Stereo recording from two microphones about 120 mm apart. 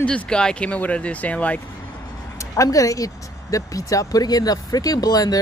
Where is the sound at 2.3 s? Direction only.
30° left (ahead or behind).